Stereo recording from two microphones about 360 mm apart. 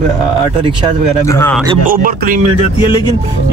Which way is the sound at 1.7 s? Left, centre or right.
Right.